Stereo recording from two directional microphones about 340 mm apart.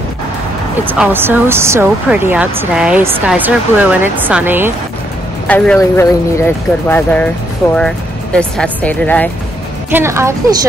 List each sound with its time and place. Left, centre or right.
0.9 s speech: centre
5.5 s speech: centre
9.8 s a woman's voice: centre